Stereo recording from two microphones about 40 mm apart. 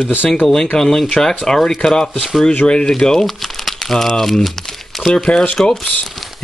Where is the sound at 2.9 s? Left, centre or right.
Centre.